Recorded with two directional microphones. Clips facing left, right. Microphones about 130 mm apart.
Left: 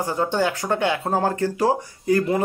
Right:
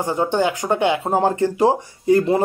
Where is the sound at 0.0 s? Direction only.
20° right (ahead or behind).